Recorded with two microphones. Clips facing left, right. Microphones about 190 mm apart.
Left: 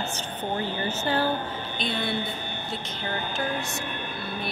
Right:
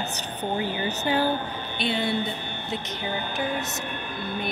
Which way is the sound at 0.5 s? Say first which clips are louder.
Right 1 dB; 15° right (ahead or behind).